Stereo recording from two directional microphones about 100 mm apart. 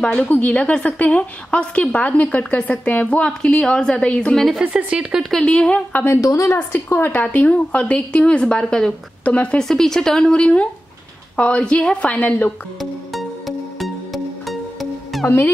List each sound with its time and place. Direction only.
0.0 s a woman's voice: 10° left (ahead or behind)
4.6 s speech: 10° right (ahead or behind)
5.2 s a woman's voice: 5° left (ahead or behind)
6.0 s a woman's voice: 35° left (ahead or behind); by 12.5 s 15° left (ahead or behind)
13.1 s music: centre (ahead or behind)
15.2 s speech: 20° left (ahead or behind)